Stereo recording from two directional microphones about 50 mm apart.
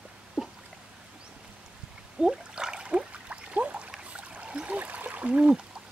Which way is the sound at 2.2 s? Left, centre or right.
Centre.